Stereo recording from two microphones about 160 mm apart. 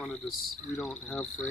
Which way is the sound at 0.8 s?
5° left (ahead or behind).